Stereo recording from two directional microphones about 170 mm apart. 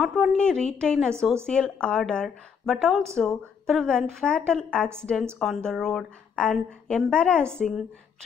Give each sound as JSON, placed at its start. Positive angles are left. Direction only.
{"t": 0.0, "sound": "a woman's voice", "side_deg": 0}